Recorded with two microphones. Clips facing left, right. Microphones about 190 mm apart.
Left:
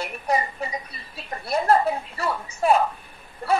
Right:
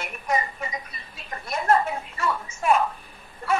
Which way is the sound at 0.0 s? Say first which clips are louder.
Left 2 dB; 35° left (ahead or behind).